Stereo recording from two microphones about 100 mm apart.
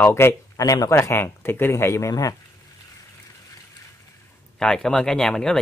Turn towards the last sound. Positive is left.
turn(degrees=5)  # may be behind; listen again after turning